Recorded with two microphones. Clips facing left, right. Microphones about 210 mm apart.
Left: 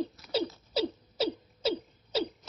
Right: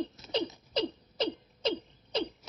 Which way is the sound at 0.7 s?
5° left (ahead or behind).